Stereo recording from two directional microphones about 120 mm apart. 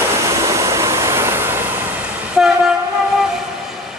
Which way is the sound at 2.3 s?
5° right (ahead or behind).